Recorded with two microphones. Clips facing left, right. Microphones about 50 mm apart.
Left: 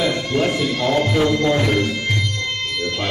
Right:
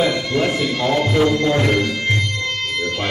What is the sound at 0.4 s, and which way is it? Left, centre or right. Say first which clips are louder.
Speech: even; centre.